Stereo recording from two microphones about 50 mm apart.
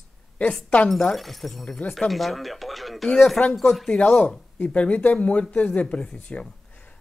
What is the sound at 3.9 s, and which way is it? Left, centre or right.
Speech, left.